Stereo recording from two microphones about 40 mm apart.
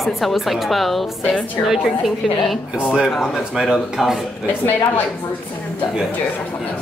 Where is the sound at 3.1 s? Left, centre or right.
Centre.